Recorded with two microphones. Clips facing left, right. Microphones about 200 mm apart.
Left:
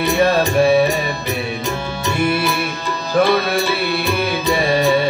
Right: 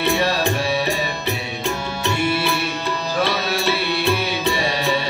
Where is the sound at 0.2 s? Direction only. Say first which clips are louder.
Left 7 dB; 55° left (ahead or behind).